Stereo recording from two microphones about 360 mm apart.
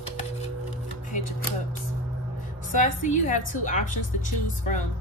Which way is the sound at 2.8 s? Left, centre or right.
Left.